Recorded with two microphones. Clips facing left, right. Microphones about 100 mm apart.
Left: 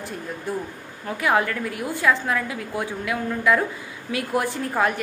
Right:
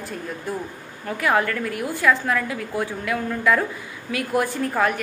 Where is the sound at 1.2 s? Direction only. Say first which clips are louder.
Even; 15° left (ahead or behind).